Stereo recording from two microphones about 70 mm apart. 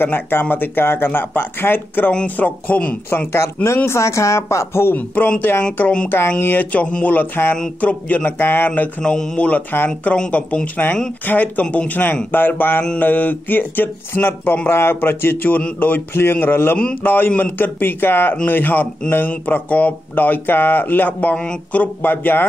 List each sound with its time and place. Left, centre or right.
0.0 s a man's voice: left
3.6 s speech: left
4.9 s a man's voice: left
5.8 s speech: centre
6.0 s a man's voice: left
9.0 s speech: centre
9.8 s a man's voice: centre; by 22.4 s left